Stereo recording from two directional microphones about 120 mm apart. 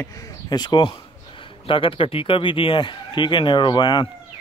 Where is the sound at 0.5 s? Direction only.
35° left (ahead or behind).